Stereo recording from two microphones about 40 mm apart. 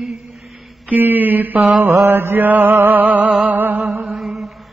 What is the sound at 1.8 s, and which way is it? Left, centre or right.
Mantra, right.